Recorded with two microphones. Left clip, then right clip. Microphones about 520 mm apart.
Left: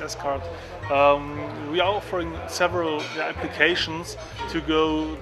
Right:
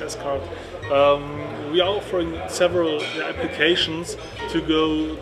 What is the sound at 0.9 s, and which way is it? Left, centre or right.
Speech, left.